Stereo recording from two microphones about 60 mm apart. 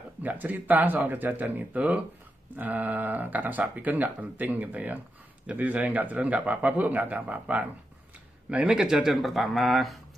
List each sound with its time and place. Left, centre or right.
0.2 s speech: right
8.5 s speech: centre